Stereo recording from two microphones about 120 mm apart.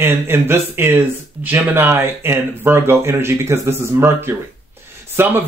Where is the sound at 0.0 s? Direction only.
20° right (ahead or behind).